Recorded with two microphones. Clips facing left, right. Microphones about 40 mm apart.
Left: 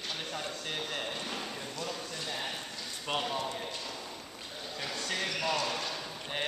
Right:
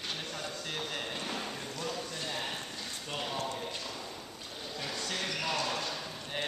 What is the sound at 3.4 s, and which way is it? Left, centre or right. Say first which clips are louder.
Clip-clop: left 1 dB; left.